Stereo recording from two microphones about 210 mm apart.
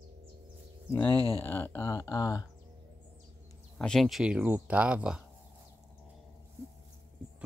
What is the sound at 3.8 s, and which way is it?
Speech, centre (ahead or behind).